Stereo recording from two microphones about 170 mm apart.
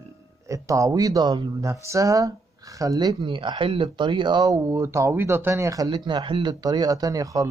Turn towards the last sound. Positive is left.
turn(degrees=-20)  # may be behind; listen again after turning